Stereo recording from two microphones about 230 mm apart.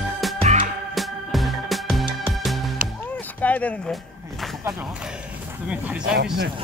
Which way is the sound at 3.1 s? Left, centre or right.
Centre.